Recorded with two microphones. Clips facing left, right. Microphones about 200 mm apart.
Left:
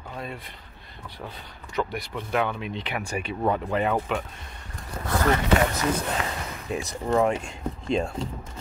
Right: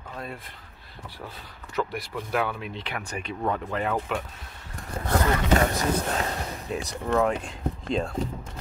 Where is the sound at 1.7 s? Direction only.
5° right (ahead or behind).